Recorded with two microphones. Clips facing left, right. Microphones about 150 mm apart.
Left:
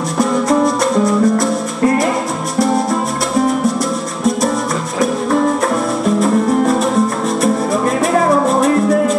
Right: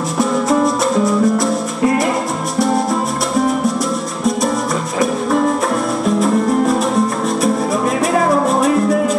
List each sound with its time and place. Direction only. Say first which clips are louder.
0.2 s music: left 1 dB; centre (ahead or behind)
6.0 s music: left 1 dB; centre (ahead or behind)
8.1 s music: left 2 dB; centre (ahead or behind)